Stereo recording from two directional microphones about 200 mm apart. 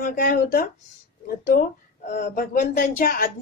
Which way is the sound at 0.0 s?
40° left (ahead or behind).